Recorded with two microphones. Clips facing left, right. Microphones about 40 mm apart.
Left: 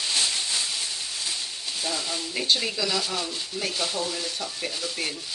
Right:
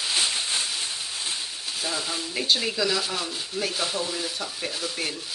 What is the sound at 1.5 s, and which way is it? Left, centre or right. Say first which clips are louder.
Speech: even; centre.